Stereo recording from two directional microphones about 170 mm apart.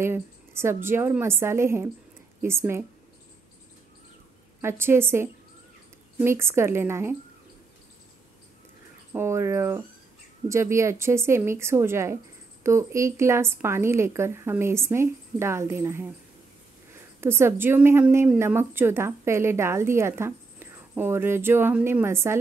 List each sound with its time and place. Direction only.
0.0 s a woman's voice: 15° right (ahead or behind)
4.6 s a woman's voice: 15° right (ahead or behind)
9.1 s a woman's voice: 15° right (ahead or behind)